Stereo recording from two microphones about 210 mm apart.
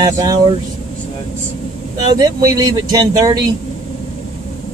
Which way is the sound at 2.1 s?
20° right (ahead or behind).